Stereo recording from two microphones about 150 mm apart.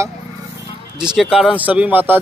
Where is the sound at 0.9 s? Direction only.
5° right (ahead or behind).